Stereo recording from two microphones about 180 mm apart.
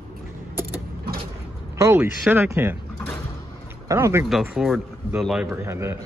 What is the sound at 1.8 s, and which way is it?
Speech, 15° right (ahead or behind).